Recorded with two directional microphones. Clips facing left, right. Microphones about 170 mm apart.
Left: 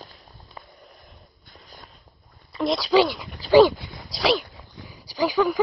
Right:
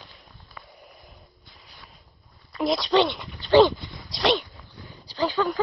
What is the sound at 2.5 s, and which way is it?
Speech, centre (ahead or behind).